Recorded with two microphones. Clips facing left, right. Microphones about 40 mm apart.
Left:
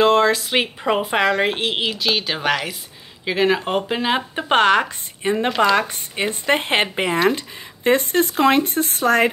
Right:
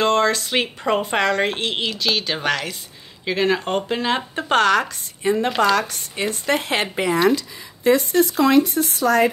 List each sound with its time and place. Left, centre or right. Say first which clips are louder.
0.0 s a woman's voice: left 3 dB; centre; by 9.3 s left